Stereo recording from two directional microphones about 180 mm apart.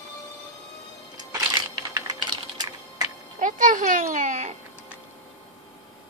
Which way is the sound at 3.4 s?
45° right (ahead or behind).